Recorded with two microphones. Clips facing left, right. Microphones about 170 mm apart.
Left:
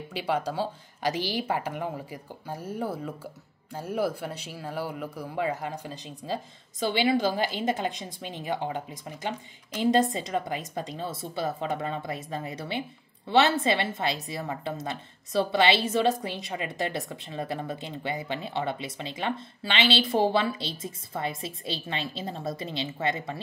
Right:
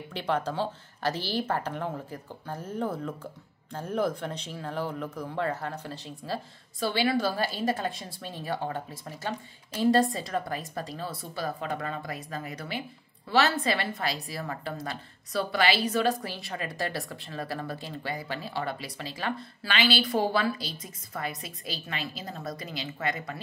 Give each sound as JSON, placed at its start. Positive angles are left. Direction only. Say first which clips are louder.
{"t": 0.1, "sound": "a woman's voice", "louder": "left 1 dB", "side_deg": 10}